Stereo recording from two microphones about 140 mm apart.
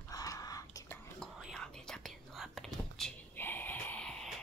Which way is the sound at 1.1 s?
5° left (ahead or behind).